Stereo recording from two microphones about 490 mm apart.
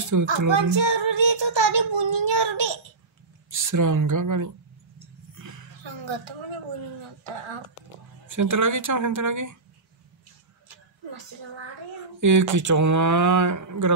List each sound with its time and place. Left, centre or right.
0.1 s speech: right
0.5 s child singing: right
3.5 s speech: right
5.3 s a sound: right
6.0 s speech: right
8.3 s speech: right
10.7 s a sound: right
12.2 s speech: right